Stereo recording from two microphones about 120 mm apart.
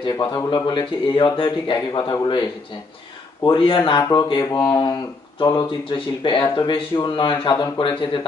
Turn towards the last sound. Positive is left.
turn(degrees=40)  # may be behind; listen again after turning